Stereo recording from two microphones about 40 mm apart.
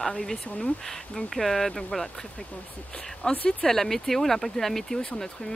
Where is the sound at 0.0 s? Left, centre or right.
Centre.